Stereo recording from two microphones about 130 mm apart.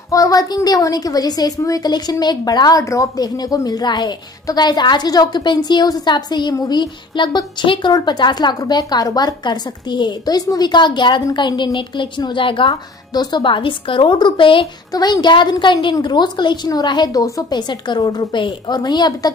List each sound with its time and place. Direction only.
0.1 s a woman's voice: 25° left (ahead or behind)
14.9 s a woman's voice: 30° left (ahead or behind)